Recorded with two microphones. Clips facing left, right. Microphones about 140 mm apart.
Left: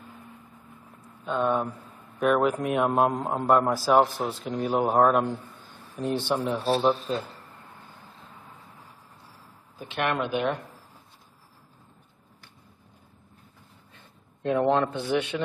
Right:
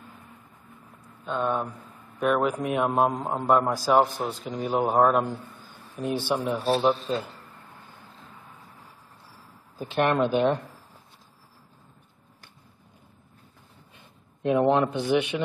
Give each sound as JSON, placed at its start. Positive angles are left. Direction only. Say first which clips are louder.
{"t": 1.2, "sound": "speech", "louder": "left 2 dB", "side_deg": 0}
{"t": 9.8, "sound": "speech", "louder": "right 5 dB", "side_deg": -35}
{"t": 13.9, "sound": "speech", "louder": "right 1 dB", "side_deg": -15}